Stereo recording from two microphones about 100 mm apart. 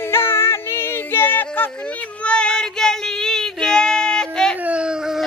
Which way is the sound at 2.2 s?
10° left (ahead or behind).